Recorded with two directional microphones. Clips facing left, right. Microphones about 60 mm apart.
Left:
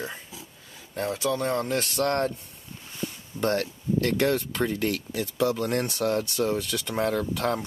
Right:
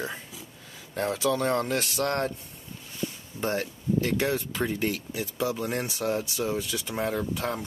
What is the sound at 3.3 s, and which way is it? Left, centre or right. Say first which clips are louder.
Speech: left 4 dB; left.